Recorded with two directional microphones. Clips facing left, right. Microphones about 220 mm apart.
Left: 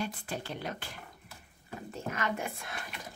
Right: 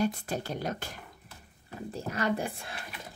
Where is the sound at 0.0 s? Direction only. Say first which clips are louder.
Right 7 dB; 40° right (ahead or behind).